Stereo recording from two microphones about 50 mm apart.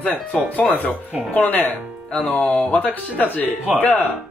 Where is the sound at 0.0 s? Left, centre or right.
Left.